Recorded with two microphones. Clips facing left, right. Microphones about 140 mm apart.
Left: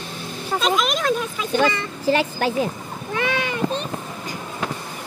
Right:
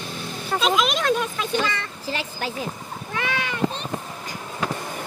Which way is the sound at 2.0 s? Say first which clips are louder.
Left 10 dB; 60° left (ahead or behind).